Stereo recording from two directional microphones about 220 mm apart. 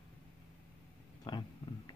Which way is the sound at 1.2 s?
20° left (ahead or behind).